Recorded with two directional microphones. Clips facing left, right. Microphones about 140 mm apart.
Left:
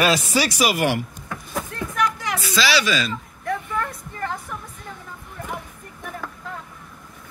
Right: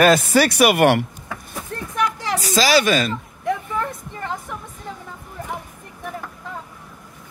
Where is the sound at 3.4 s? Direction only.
20° right (ahead or behind).